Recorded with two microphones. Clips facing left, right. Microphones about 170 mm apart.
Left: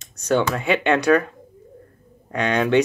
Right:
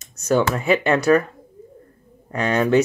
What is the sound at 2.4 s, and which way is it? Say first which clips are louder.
Speech: right 1 dB; 5° right (ahead or behind).